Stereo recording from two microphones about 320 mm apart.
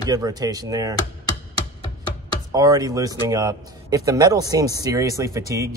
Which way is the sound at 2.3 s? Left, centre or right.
Centre.